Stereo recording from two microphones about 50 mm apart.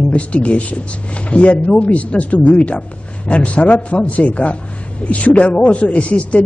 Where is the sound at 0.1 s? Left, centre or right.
Left.